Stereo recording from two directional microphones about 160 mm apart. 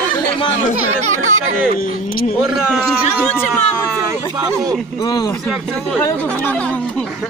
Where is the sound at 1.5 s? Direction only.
65° left (ahead or behind).